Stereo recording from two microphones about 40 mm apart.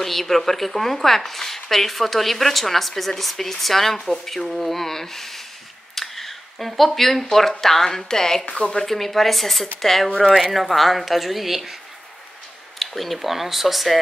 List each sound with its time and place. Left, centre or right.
0.0 s a woman's voice: centre
5.9 s a sound: centre
7.3 s speech: centre
8.5 s a woman's voice: left
8.8 s a woman's voice: centre
12.7 s a woman's voice: centre